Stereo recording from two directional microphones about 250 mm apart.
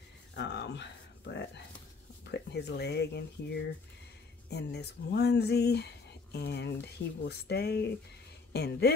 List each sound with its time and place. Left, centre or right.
0.4 s speech: left